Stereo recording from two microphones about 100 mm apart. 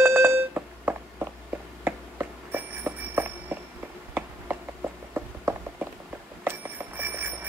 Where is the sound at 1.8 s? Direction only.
20° right (ahead or behind).